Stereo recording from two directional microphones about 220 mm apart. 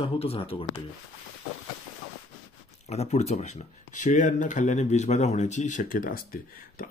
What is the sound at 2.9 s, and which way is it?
Speech, 30° left (ahead or behind).